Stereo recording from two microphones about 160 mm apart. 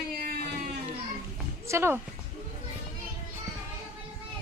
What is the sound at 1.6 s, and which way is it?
Speech, 15° right (ahead or behind).